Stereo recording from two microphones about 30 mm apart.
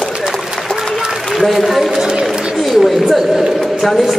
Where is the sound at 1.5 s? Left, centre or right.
Centre.